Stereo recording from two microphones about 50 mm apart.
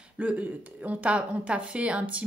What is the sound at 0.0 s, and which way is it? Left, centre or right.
Speech, right.